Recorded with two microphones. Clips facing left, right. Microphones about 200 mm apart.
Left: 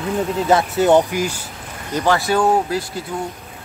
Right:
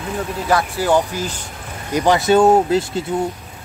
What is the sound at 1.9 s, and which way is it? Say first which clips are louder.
Speech: right 4 dB; 15° right (ahead or behind).